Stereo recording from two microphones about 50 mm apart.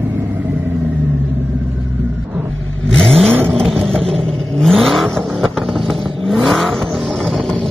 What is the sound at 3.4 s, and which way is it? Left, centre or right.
Vehicle, centre.